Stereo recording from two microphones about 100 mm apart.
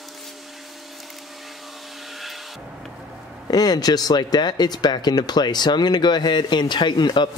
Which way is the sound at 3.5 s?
40° left (ahead or behind).